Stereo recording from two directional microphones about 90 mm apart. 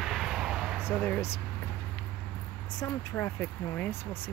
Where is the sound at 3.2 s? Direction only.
20° left (ahead or behind).